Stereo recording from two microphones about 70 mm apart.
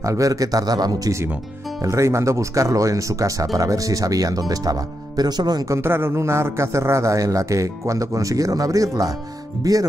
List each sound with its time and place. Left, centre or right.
0.0 s speech: right
1.9 s speech: right
5.7 s a man's voice: right